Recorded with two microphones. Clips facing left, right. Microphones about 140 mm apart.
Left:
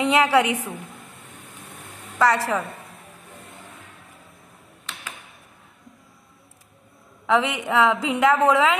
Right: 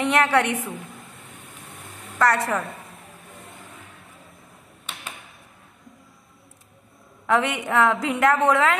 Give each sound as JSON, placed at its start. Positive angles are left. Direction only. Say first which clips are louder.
{"t": 0.0, "sound": "a woman's voice", "louder": "left 2 dB", "side_deg": 5}
{"t": 2.1, "sound": "a woman's voice", "louder": "left 1 dB", "side_deg": 0}
{"t": 7.2, "sound": "a woman's voice", "louder": "left 1 dB", "side_deg": 0}